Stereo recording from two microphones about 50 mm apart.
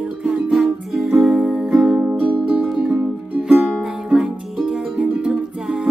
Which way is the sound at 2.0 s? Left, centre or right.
Right.